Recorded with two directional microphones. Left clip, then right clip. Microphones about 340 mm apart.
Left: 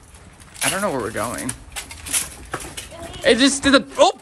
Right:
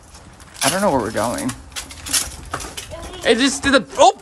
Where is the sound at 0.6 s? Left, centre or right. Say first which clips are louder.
Right 4 dB; centre.